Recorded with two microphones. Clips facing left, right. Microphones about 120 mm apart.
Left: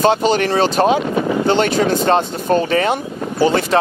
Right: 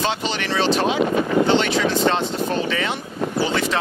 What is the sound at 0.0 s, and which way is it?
Speech, 45° left (ahead or behind).